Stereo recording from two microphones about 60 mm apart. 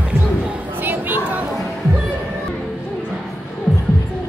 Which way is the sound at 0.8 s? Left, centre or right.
Right.